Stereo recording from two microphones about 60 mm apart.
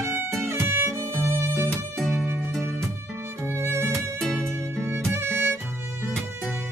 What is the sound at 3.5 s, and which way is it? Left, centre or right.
Music, right.